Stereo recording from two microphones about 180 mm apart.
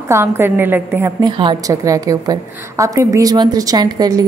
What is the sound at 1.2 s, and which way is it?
A woman's voice, 25° right (ahead or behind).